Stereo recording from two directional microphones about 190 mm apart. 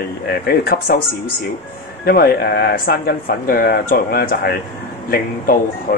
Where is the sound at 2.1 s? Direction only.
50° left (ahead or behind).